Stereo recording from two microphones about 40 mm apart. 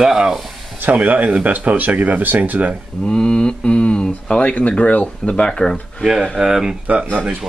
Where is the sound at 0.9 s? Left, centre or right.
Right.